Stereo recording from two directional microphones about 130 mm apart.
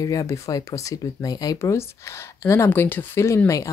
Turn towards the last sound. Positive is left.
turn(degrees=20)  # may be behind; listen again after turning